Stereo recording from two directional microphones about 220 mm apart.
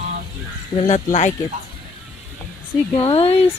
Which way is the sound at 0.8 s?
30° left (ahead or behind).